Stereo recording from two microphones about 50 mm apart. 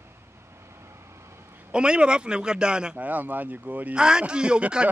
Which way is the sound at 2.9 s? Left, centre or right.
Right.